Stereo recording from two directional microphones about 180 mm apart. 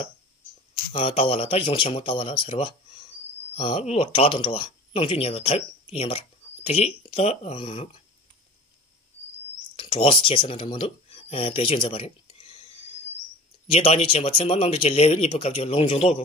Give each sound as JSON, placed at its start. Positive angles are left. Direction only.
{"t": 0.9, "sound": "speech", "side_deg": 30}
{"t": 9.8, "sound": "speech", "side_deg": 30}
{"t": 13.7, "sound": "speech", "side_deg": 35}